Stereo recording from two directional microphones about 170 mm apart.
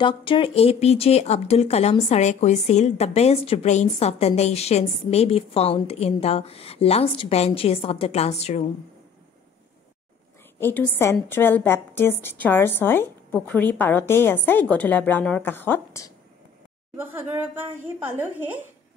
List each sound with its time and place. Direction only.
0.0 s speech: 30° left (ahead or behind)
10.6 s a woman's voice: 10° left (ahead or behind)
16.9 s speech: 15° right (ahead or behind)